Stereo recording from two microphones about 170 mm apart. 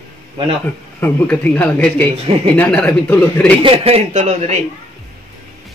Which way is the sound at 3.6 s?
35° right (ahead or behind).